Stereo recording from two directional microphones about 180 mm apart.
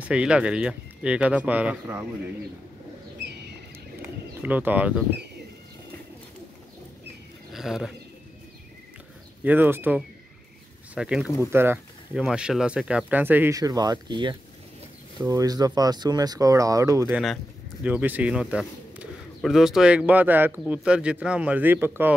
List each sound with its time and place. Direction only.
0.0 s speech: 5° right (ahead or behind)
4.4 s speech: 10° right (ahead or behind)
7.5 s speech: centre (ahead or behind)
9.4 s speech: 10° right (ahead or behind)
17.1 s speech: centre (ahead or behind)